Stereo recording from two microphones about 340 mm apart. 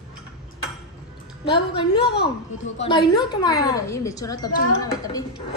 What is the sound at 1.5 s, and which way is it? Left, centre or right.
Speech, centre.